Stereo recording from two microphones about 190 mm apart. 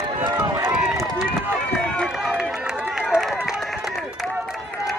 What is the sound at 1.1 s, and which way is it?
Run, 10° right (ahead or behind).